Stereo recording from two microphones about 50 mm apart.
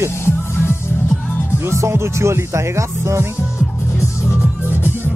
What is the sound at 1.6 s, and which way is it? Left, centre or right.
Speech, right.